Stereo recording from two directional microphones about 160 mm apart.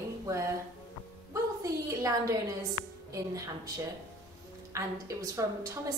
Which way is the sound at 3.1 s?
20° right (ahead or behind).